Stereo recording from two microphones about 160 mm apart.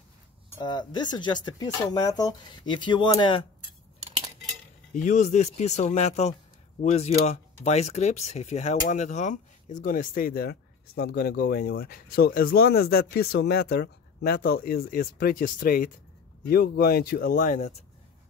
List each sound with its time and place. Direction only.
0.6 s speech: 25° left (ahead or behind)
4.9 s speech: 50° left (ahead or behind)